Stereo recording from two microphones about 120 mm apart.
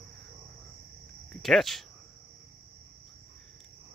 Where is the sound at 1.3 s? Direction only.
Centre (ahead or behind).